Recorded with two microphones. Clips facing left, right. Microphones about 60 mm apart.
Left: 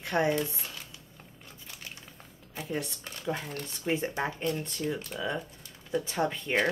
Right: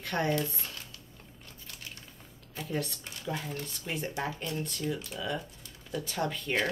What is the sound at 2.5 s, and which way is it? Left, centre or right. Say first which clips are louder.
Speech: even; centre.